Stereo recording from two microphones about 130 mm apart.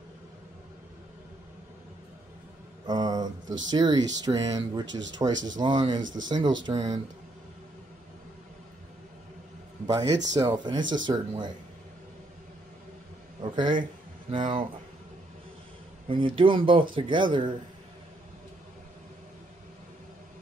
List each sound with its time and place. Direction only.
2.9 s mantra: 30° right (ahead or behind)
3.7 s speech: 30° right (ahead or behind)
9.8 s speech: 30° right (ahead or behind)
13.4 s a sound: 35° right (ahead or behind)
14.3 s speech: 40° right (ahead or behind)
16.1 s speech: 40° right (ahead or behind)